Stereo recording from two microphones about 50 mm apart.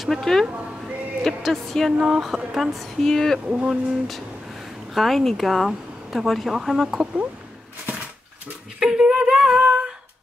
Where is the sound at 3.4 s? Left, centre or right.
Right.